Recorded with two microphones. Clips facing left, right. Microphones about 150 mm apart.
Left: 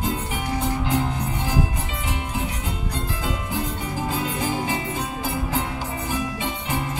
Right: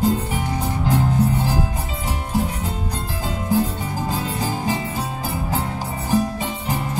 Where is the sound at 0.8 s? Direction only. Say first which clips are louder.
Right 5 dB; 35° right (ahead or behind).